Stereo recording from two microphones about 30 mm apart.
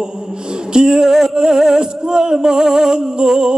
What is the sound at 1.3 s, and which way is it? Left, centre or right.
Music, right.